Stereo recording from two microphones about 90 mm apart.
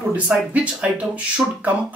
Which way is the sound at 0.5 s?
15° right (ahead or behind).